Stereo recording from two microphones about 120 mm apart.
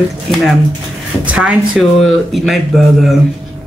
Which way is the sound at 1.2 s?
10° right (ahead or behind).